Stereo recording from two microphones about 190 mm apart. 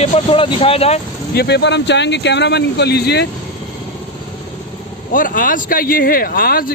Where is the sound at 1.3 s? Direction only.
60° left (ahead or behind).